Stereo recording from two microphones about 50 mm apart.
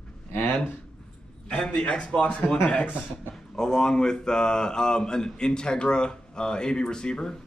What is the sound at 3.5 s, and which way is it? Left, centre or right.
Speech, centre.